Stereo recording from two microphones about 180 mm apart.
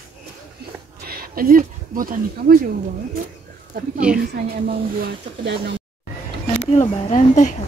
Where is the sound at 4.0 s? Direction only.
5° right (ahead or behind).